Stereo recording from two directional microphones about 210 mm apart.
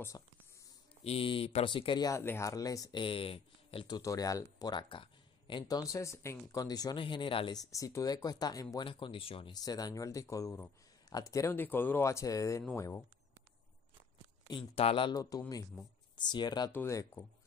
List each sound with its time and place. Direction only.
1.0 s speech: 25° left (ahead or behind)
14.5 s speech: 25° left (ahead or behind)